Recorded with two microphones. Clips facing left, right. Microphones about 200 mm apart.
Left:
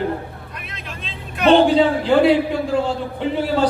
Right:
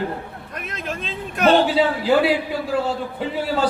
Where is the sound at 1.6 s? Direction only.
5° right (ahead or behind).